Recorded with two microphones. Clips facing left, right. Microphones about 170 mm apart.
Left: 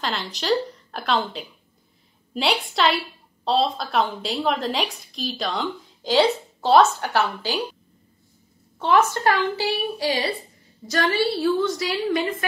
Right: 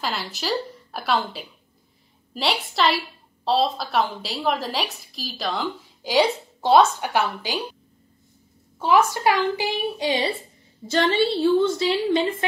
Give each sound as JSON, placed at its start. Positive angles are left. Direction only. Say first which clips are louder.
{"t": 0.0, "sound": "a woman's voice", "louder": "even", "side_deg": -5}
{"t": 6.1, "sound": "a woman's voice", "louder": "left 1 dB", "side_deg": -10}
{"t": 8.7, "sound": "a woman's voice", "louder": "even", "side_deg": -10}